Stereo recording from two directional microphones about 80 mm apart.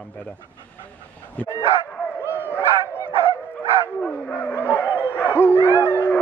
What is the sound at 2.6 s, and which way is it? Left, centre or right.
Dog, right.